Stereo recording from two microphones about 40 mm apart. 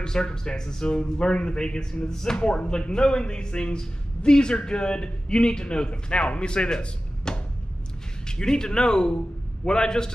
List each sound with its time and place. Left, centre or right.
0.0 s speech: centre